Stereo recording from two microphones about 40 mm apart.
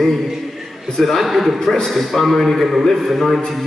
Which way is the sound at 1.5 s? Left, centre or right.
Centre.